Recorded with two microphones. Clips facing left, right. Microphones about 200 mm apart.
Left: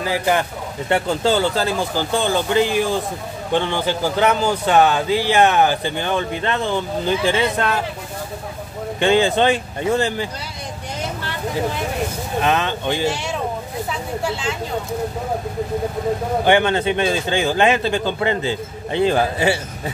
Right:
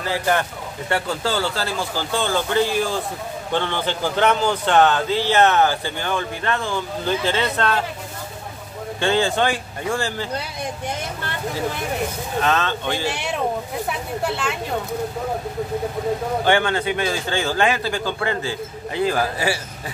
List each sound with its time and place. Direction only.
0.0 s a man's voice: 10° left (ahead or behind)
9.0 s speech: 15° left (ahead or behind)
12.4 s a man's voice: 15° left (ahead or behind)
13.1 s speech: 60° right (ahead or behind)
16.4 s speech: 20° left (ahead or behind)